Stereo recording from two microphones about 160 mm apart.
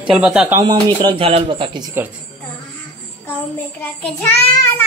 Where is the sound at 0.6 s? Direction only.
30° right (ahead or behind).